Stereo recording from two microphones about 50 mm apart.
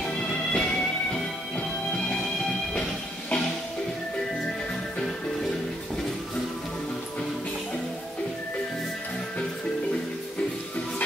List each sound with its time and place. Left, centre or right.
0.0 s music: left